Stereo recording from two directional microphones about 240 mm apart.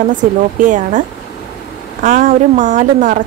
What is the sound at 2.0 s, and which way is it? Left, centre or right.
A woman's voice, right.